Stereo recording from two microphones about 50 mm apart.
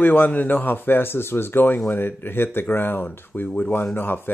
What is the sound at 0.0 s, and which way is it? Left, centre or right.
Speech, left.